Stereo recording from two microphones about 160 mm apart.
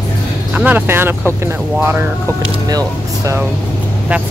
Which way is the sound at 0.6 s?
10° right (ahead or behind).